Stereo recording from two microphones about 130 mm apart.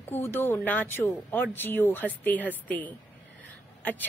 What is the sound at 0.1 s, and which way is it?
Speech, 15° left (ahead or behind).